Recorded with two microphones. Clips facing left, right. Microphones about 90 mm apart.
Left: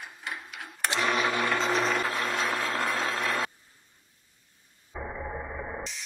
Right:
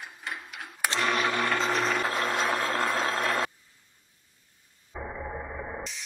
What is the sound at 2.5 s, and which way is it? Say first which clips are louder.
Vehicle: right 2 dB; 20° right (ahead or behind).